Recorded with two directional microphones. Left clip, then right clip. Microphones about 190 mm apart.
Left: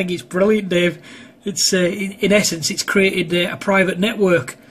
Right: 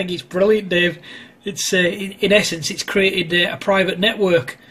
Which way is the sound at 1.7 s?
5° left (ahead or behind).